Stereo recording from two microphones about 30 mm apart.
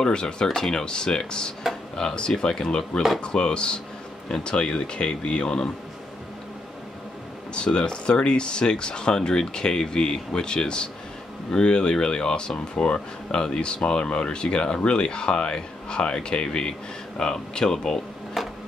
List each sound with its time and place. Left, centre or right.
0.0 s speech: left
7.5 s speech: left
12.5 s speech: left
18.4 s a sound: centre